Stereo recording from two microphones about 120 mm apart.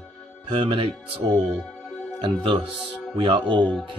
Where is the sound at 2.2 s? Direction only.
45° right (ahead or behind).